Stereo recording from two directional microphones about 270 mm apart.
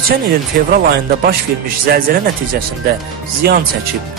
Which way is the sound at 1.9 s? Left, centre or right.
Right.